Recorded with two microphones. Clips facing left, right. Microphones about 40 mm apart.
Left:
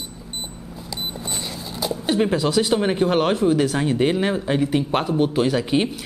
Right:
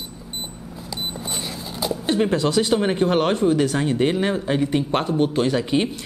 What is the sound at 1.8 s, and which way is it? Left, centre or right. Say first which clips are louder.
Speech: even; centre.